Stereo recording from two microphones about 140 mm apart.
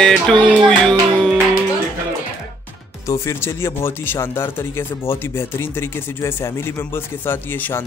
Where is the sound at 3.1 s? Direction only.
20° left (ahead or behind).